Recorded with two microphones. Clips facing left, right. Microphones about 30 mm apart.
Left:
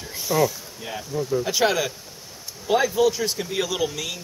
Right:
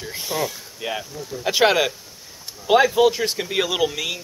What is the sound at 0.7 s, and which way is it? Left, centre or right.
Speech, right.